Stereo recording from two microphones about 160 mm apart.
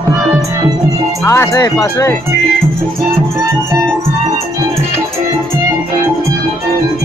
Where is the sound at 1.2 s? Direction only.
20° left (ahead or behind).